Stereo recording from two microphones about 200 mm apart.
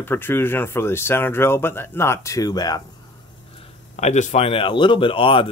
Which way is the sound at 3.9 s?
35° left (ahead or behind).